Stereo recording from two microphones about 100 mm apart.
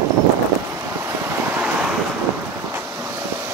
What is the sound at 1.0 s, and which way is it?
Waves, 15° right (ahead or behind).